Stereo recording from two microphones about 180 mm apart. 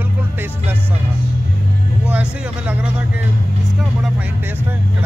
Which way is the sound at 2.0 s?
5° right (ahead or behind).